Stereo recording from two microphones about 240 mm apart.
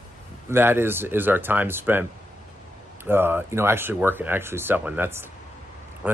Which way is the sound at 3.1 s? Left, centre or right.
Centre.